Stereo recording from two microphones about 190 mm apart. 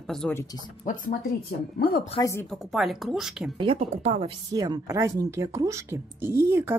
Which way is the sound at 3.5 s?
30° right (ahead or behind).